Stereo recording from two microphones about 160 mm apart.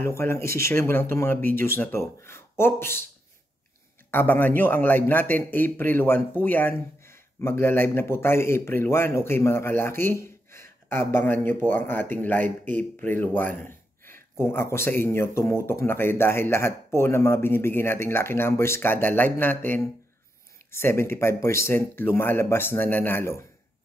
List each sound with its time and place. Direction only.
0.0 s speech: 15° left (ahead or behind)
4.1 s speech: 10° left (ahead or behind)